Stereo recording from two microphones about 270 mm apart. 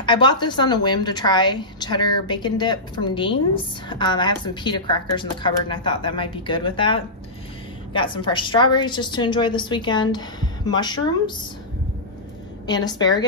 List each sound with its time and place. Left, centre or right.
0.0 s a woman's voice: centre
12.6 s a woman's voice: centre